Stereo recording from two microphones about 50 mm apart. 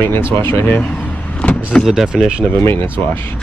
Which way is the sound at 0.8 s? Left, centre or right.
Left.